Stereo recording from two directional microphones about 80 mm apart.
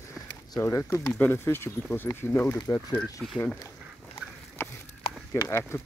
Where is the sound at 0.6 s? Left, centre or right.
Left; by 2.6 s centre.